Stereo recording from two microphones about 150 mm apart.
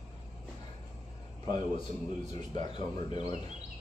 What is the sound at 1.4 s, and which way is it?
A man's voice, 30° left (ahead or behind).